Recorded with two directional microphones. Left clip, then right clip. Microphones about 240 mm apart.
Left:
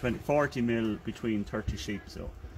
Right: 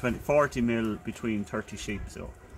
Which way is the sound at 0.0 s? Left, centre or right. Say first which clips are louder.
Right 3 dB; centre.